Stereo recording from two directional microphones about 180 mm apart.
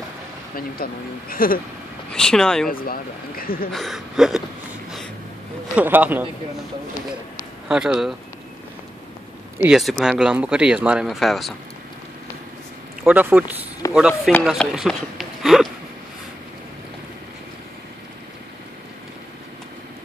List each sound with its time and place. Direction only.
1.3 s speech: 50° left (ahead or behind)
2.1 s speech: 5° left (ahead or behind)
2.7 s speech: 55° left (ahead or behind)
3.7 s speech: centre (ahead or behind)
5.8 s speech: 10° right (ahead or behind)
7.3 s a sound: 5° right (ahead or behind)
9.6 s speech: 5° right (ahead or behind)
13.0 s speech: 10° right (ahead or behind)